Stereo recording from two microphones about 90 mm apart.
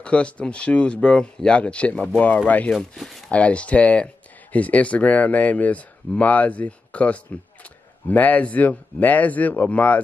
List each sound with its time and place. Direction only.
0.0 s speech: 15° left (ahead or behind)
2.7 s speech: centre (ahead or behind)
3.3 s speech: 15° left (ahead or behind)